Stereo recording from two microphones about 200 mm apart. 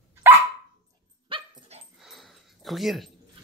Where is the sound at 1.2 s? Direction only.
25° right (ahead or behind).